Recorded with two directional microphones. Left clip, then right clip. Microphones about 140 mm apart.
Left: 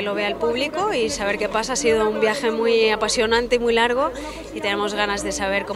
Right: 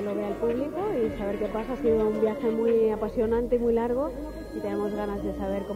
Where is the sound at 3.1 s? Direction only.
40° right (ahead or behind).